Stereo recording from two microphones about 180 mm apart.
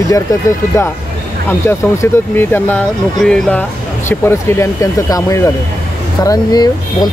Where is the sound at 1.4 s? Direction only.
15° left (ahead or behind).